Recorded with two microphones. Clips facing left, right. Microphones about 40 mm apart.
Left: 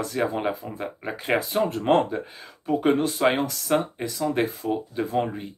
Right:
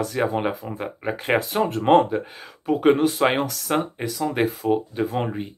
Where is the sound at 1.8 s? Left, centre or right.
Centre.